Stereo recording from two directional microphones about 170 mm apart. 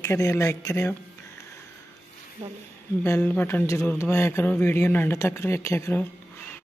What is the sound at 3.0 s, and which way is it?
A man's voice, 10° left (ahead or behind).